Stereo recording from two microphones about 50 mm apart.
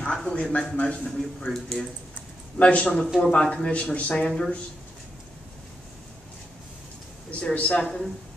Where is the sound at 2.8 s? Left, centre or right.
Centre.